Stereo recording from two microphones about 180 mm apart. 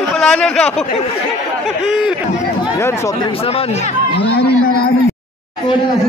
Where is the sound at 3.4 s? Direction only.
35° left (ahead or behind).